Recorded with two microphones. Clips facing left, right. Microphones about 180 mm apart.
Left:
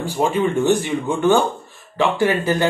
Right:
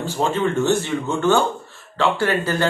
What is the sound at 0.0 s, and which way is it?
Speech, 15° left (ahead or behind).